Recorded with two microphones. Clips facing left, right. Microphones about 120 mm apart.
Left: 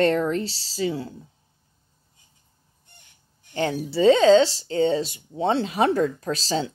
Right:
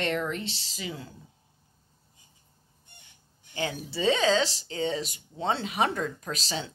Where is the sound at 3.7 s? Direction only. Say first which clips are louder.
Left 10 dB; 30° left (ahead or behind).